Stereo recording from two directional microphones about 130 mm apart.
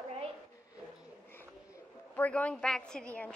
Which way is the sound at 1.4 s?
15° left (ahead or behind).